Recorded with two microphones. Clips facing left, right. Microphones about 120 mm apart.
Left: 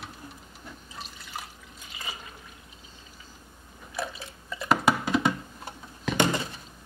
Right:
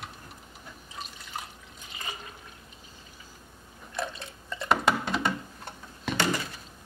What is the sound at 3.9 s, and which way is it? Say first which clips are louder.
Drip: even; 5° left (ahead or behind).